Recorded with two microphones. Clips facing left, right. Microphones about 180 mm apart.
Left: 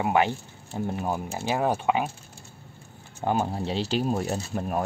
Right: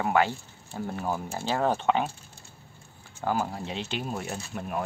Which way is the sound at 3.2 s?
25° left (ahead or behind).